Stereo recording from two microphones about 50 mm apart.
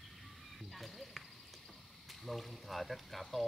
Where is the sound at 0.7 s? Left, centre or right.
Centre.